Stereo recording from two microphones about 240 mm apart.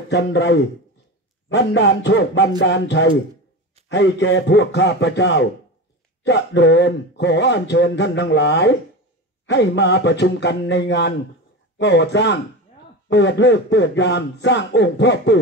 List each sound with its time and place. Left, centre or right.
0.1 s speech: left